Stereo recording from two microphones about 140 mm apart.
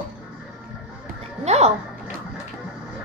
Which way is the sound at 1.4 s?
50° right (ahead or behind).